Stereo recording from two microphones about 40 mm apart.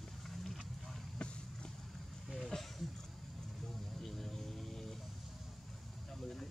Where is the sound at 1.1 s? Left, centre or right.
Left.